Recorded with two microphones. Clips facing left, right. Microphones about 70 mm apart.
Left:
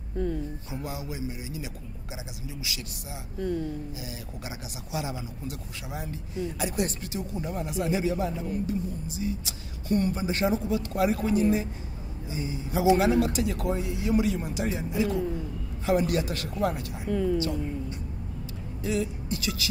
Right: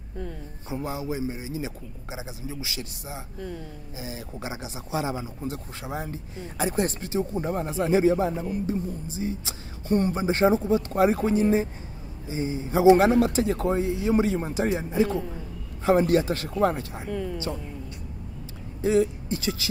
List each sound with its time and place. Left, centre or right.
0.7 s speech: right
3.3 s speech: centre
4.0 s speech: right
17.1 s speech: centre
18.8 s speech: right